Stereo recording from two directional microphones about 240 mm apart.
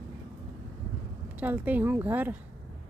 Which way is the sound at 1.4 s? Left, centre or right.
Centre.